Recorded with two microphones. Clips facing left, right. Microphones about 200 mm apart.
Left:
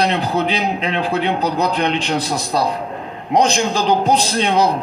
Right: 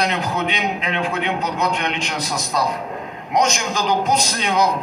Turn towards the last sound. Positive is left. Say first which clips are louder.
# left 3 dB
turn(degrees=30)  # may be behind; listen again after turning